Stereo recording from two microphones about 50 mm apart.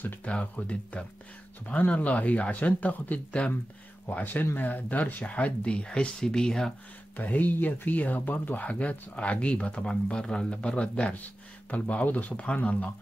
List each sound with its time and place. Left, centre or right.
0.2 s speech: left
7.2 s speech: left